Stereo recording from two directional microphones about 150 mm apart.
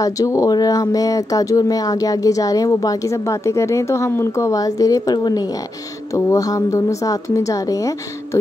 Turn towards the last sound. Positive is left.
turn(degrees=20)  # may be behind; listen again after turning